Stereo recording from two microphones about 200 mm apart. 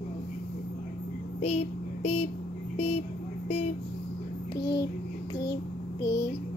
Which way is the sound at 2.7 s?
30° left (ahead or behind).